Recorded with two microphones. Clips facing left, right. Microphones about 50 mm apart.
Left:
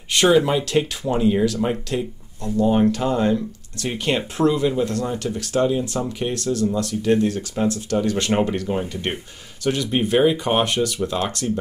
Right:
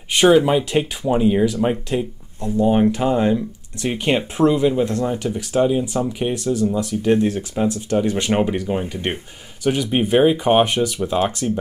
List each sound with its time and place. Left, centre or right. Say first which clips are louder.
0.1 s speech: right 3 dB; centre
8.3 s speech: right 2 dB; centre